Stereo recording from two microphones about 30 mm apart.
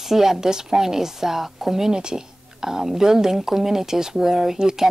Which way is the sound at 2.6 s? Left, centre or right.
Centre.